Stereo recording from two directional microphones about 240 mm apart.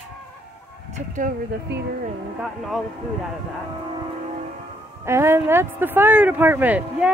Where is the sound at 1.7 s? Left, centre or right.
Right.